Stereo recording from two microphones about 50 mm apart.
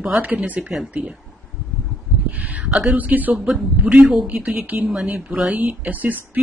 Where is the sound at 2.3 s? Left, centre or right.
Right.